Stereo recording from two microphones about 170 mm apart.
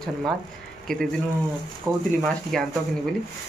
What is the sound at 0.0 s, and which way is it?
Speech, 5° left (ahead or behind).